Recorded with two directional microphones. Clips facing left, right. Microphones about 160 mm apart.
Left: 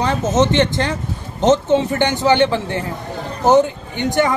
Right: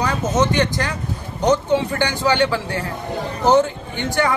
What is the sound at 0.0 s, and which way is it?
A man's voice, 25° left (ahead or behind).